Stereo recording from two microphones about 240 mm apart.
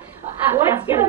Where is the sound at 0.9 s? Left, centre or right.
Centre.